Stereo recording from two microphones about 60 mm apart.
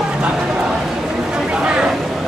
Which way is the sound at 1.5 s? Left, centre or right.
Centre.